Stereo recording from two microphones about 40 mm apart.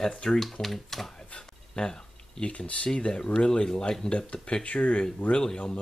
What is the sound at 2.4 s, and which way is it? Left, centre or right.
Speech, left.